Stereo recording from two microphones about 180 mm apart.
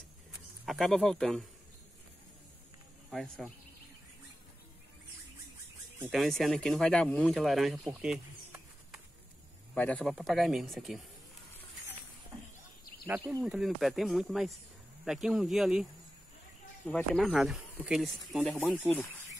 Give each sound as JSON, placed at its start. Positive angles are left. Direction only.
{"t": 0.7, "sound": "speech", "side_deg": 5}
{"t": 3.1, "sound": "speech", "side_deg": 0}
{"t": 6.0, "sound": "speech", "side_deg": 0}
{"t": 13.0, "sound": "speech", "side_deg": -15}
{"t": 13.4, "sound": "speech", "side_deg": 0}